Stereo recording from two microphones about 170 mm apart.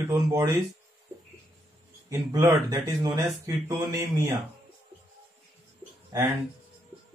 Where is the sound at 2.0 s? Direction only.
20° right (ahead or behind).